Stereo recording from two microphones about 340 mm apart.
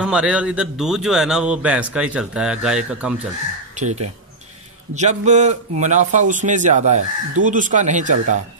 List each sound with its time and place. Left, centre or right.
0.0 s a man's voice: centre
3.7 s a man's voice: right